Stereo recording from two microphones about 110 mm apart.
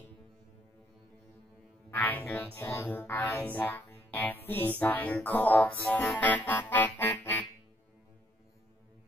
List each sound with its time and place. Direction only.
1.9 s speech: 20° left (ahead or behind)